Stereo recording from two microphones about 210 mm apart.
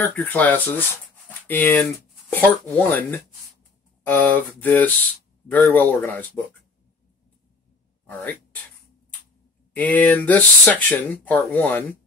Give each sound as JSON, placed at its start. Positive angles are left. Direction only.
{"t": 0.0, "sound": "speech", "side_deg": 10}
{"t": 9.8, "sound": "speech", "side_deg": 10}